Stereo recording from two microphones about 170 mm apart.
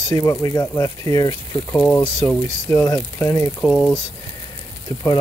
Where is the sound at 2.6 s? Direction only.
20° left (ahead or behind).